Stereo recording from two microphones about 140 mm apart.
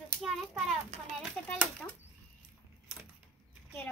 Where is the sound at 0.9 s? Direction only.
50° right (ahead or behind).